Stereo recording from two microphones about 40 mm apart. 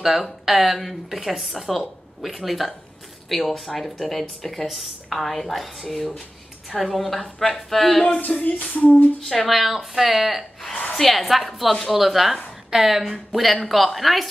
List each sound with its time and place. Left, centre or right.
0.0 s speech: centre
8.2 s music: left
9.2 s speech: centre
9.5 s speech: centre